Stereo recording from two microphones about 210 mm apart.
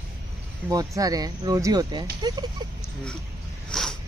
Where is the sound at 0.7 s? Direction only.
15° right (ahead or behind).